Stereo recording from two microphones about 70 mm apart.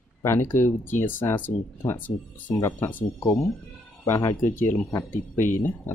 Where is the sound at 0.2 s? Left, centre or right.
Left.